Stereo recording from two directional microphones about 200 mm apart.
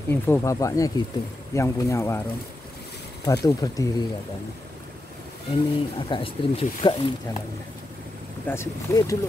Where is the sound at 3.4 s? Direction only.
15° left (ahead or behind).